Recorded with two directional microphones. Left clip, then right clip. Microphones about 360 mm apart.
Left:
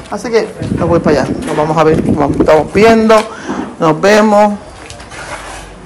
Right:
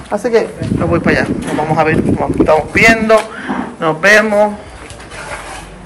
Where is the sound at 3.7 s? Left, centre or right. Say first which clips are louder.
Left 1 dB; left.